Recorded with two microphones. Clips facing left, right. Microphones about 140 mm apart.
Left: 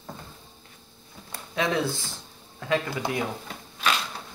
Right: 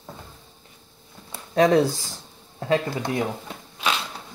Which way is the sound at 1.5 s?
40° right (ahead or behind).